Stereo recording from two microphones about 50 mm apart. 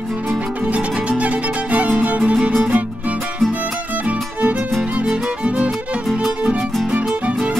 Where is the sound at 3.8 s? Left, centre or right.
Right.